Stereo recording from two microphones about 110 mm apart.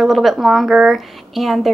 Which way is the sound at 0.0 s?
Centre (ahead or behind).